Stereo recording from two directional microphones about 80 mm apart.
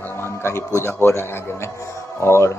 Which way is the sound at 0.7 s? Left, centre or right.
Left.